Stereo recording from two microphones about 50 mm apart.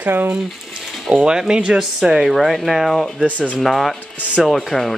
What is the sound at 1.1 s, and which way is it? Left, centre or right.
Speech, right.